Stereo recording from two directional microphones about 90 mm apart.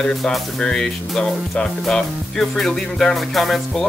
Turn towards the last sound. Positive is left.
turn(degrees=0)  # may be behind; listen again after turning